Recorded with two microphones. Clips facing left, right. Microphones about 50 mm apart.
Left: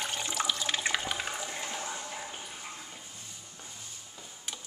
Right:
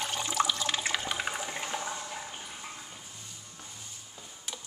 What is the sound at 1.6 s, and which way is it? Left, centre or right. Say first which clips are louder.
Water: right 2 dB; centre.